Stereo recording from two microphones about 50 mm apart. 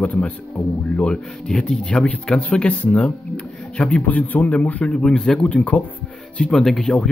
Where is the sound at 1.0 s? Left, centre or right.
Centre.